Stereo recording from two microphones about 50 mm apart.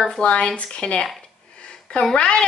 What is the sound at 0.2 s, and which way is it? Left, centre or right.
Speech, left.